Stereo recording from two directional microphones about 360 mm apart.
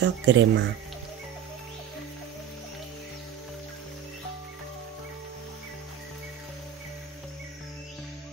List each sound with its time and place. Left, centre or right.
0.0 s speech: right